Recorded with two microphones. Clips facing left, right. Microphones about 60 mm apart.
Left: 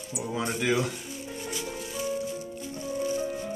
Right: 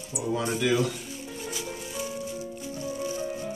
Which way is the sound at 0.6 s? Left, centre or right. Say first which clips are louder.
Right 1 dB; left.